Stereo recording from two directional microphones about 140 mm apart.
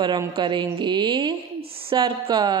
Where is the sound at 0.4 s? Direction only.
35° right (ahead or behind).